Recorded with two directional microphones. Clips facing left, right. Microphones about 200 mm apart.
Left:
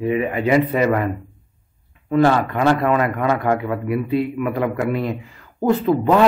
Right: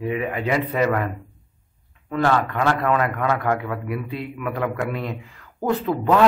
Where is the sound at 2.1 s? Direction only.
10° left (ahead or behind).